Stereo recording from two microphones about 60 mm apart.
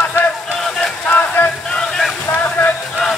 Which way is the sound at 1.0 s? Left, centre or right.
Left.